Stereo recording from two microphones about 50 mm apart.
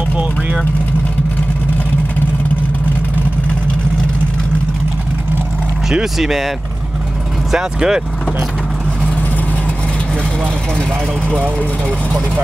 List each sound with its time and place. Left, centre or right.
6.1 s speech: centre
7.5 s speech: centre
11.2 s speech: right